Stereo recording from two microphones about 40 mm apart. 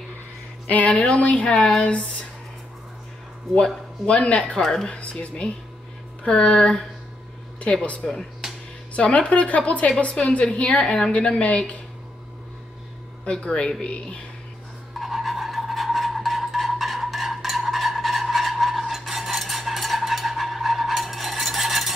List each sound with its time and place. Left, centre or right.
0.7 s a woman's voice: left
1.5 s a woman's voice: centre
4.2 s a woman's voice: left
11.1 s a woman's voice: left
13.2 s a woman's voice: left
15.0 s a sound: centre